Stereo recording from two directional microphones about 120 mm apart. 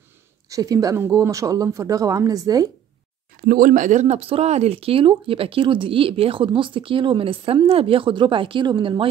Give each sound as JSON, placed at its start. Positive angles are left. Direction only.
{"t": 0.5, "sound": "speech", "side_deg": -30}
{"t": 3.7, "sound": "speech", "side_deg": -90}